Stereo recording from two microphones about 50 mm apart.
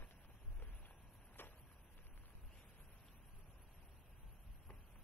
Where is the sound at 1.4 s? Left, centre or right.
Left.